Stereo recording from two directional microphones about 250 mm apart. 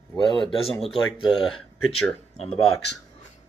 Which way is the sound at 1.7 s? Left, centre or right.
Left.